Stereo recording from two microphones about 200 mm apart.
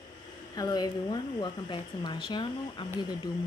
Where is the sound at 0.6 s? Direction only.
20° left (ahead or behind).